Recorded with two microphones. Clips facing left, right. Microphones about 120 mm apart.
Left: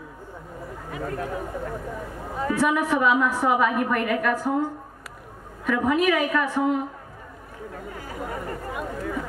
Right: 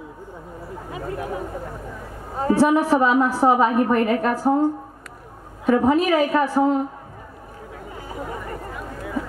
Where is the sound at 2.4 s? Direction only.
30° right (ahead or behind).